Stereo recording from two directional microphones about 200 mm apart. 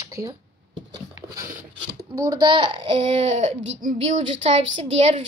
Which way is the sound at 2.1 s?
20° right (ahead or behind).